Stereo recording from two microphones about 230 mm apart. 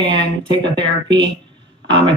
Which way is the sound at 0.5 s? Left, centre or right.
Centre.